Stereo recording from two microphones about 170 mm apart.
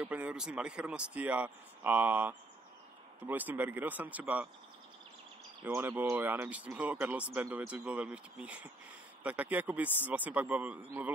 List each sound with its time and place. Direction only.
0.0 s speech: 10° right (ahead or behind)
5.7 s speech: 10° right (ahead or behind)